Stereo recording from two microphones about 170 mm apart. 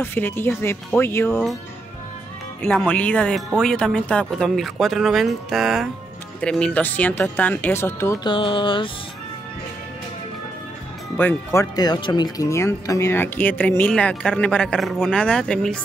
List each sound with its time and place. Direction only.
0.0 s speech: 10° left (ahead or behind)
2.6 s speech: 5° left (ahead or behind)
8.2 s music: 30° left (ahead or behind)
11.1 s speech: 10° left (ahead or behind)
11.7 s speech: 25° left (ahead or behind); by 15.8 s 5° left (ahead or behind)